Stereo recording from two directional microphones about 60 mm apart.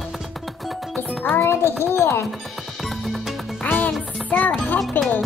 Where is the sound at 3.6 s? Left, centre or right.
Left.